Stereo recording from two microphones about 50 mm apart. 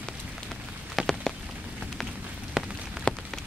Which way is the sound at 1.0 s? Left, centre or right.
Centre.